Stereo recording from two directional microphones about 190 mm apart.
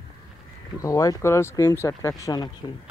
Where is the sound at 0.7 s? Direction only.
20° left (ahead or behind).